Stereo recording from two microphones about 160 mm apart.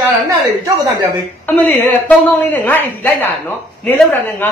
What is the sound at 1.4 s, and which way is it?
A woman's voice, 10° left (ahead or behind).